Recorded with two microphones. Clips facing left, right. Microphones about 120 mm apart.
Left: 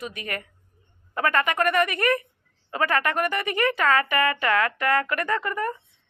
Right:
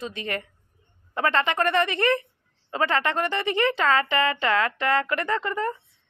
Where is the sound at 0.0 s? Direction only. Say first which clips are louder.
Right 2 dB; 25° right (ahead or behind).